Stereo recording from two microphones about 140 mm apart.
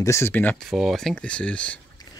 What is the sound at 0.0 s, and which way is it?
Speech, 20° left (ahead or behind).